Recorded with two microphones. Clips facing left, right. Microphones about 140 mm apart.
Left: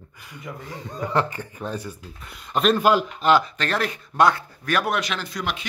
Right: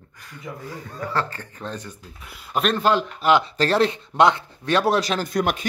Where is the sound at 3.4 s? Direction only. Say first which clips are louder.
Right 6 dB; 30° right (ahead or behind).